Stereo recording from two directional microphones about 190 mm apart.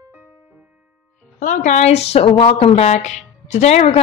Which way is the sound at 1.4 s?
40° left (ahead or behind).